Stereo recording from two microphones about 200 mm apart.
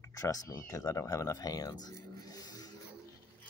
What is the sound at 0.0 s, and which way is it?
Speech, 15° left (ahead or behind).